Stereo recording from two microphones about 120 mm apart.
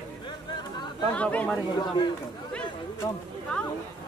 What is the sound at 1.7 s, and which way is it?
Speech, 40° left (ahead or behind).